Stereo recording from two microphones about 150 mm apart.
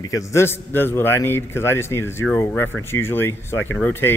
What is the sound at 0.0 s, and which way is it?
A man's voice, 20° left (ahead or behind).